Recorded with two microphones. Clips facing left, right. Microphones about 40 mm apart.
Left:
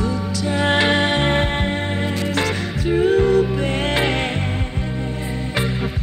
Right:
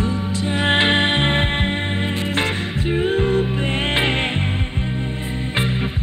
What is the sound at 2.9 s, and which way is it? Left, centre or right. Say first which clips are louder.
Music: left 4 dB; right.